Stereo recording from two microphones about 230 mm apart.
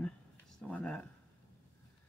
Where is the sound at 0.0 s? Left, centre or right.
Centre.